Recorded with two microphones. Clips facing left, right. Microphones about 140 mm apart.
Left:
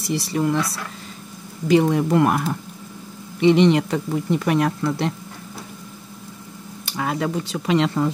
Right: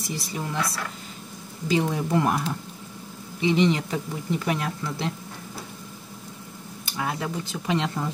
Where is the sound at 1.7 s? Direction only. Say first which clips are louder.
Left 7 dB; 65° left (ahead or behind).